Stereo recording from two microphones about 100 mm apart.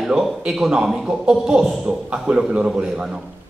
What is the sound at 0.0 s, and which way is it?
A man's voice, centre (ahead or behind).